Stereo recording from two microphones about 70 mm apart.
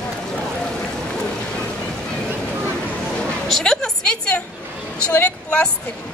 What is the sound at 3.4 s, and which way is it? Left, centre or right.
A woman's voice, centre.